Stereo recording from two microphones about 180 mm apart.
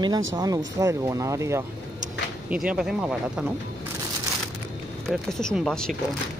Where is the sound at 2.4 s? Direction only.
5° right (ahead or behind).